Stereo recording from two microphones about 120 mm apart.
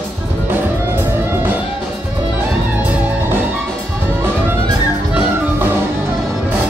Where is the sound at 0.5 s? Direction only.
20° right (ahead or behind).